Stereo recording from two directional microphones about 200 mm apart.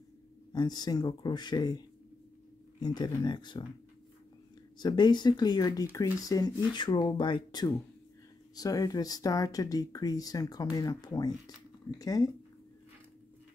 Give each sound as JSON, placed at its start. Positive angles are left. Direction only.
{"t": 0.5, "sound": "speech", "side_deg": 20}
{"t": 4.7, "sound": "speech", "side_deg": 20}